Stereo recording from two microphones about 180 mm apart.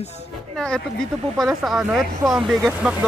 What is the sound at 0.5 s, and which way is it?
Speech, 5° left (ahead or behind).